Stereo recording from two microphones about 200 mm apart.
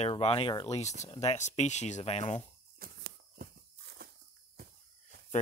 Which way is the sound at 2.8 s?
45° right (ahead or behind).